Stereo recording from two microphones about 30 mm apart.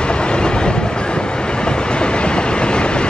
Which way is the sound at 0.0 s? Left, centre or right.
Left.